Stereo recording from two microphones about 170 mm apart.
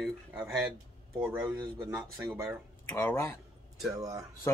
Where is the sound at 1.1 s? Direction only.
10° right (ahead or behind).